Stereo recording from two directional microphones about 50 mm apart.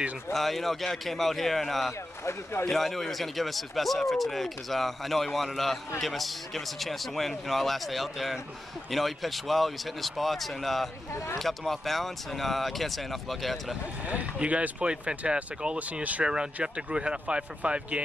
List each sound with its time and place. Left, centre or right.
0.3 s speech: centre
2.2 s speech: left
2.7 s speech: centre
14.0 s speech: right
16.6 s speech: centre